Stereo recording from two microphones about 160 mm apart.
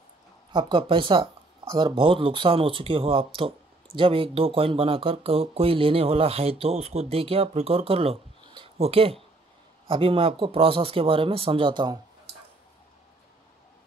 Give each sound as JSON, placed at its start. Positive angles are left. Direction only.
{"t": 0.5, "sound": "speech", "side_deg": -30}